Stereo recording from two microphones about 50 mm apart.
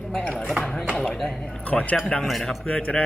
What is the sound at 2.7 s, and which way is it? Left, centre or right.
Speech, left.